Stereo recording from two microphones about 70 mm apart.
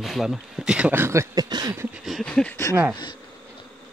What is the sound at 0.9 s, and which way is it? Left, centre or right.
Speech, right.